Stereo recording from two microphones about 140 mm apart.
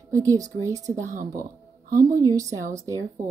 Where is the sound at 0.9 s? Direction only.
70° right (ahead or behind).